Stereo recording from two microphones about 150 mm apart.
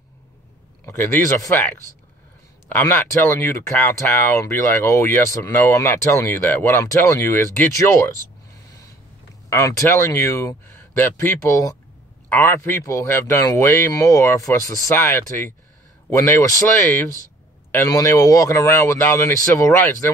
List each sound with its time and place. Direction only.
0.8 s speech: 15° left (ahead or behind)
2.7 s speech: 15° left (ahead or behind)
9.5 s speech: 20° left (ahead or behind)